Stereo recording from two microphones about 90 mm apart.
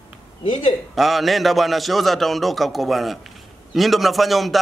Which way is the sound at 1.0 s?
Centre (ahead or behind).